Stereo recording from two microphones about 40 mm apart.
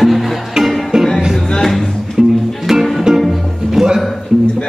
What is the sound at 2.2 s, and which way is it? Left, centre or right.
Music, centre.